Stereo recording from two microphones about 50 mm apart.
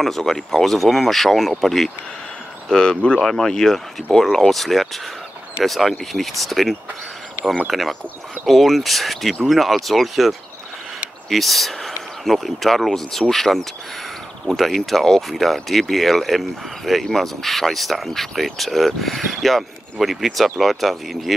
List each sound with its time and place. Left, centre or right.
0.0 s speech: centre
2.7 s speech: centre
3.2 s speech: centre